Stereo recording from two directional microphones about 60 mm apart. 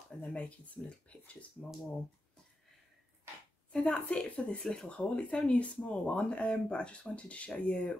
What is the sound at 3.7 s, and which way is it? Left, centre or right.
Speech, centre.